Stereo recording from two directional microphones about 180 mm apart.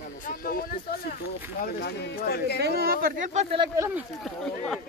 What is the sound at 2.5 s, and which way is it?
Speech, 60° right (ahead or behind).